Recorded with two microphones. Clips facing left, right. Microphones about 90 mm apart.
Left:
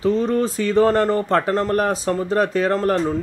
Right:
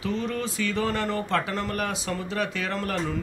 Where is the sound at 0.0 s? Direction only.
35° left (ahead or behind).